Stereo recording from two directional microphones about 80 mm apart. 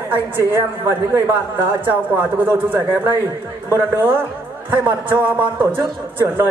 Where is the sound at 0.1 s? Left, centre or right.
Right.